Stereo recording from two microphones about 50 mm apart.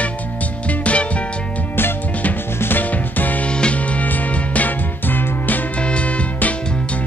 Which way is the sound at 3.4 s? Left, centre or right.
Left.